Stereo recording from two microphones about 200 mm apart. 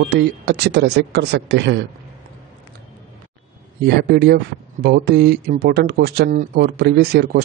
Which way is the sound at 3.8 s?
55° right (ahead or behind).